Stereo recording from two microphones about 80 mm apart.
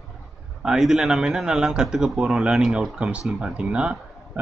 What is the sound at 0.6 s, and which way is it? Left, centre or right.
Speech, centre.